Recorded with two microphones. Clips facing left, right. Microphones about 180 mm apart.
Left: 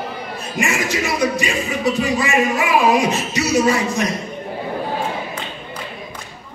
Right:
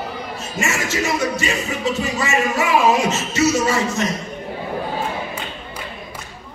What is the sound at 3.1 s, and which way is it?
Music, 15° left (ahead or behind).